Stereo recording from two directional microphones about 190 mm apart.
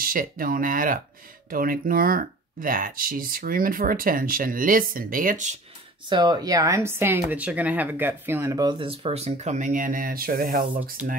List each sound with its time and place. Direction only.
0.0 s speech: 50° right (ahead or behind)
6.0 s speech: 25° right (ahead or behind); by 11.0 s 50° right (ahead or behind)